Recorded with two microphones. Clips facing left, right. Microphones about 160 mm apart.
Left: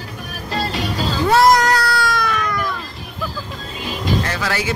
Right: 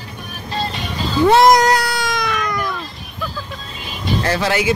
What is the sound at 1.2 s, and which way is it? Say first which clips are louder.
Cat: right 3 dB; 20° right (ahead or behind).